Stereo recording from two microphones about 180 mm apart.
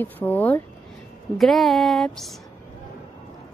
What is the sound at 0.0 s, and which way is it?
A woman's voice, 10° left (ahead or behind).